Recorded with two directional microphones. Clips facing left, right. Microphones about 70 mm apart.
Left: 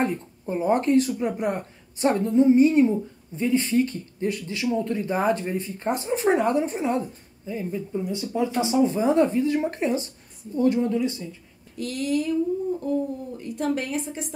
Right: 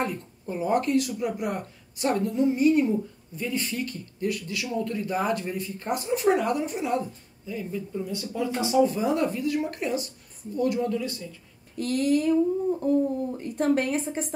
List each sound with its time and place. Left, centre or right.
0.0 s speech: left
11.7 s speech: right
13.4 s a woman's voice: right